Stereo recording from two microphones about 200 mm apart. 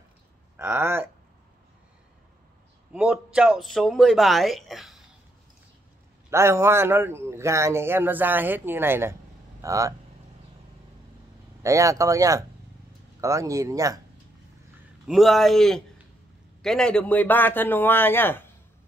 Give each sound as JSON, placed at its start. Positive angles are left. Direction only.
{"t": 0.6, "sound": "a man's voice", "side_deg": -10}
{"t": 2.9, "sound": "speech", "side_deg": -5}
{"t": 6.3, "sound": "a man's voice", "side_deg": -15}
{"t": 11.6, "sound": "a man's voice", "side_deg": -15}
{"t": 15.0, "sound": "a man's voice", "side_deg": 0}